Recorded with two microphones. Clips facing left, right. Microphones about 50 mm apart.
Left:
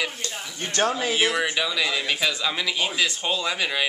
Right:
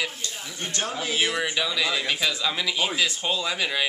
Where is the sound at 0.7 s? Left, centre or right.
Left.